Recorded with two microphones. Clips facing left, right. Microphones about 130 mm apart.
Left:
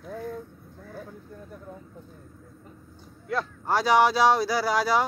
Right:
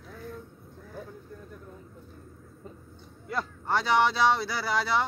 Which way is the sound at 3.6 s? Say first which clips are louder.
Left 4 dB; 10° left (ahead or behind).